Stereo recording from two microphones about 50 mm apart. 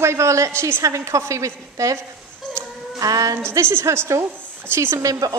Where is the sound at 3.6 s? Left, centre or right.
Right.